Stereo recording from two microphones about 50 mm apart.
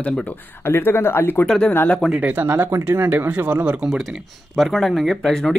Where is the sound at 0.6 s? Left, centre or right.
Left.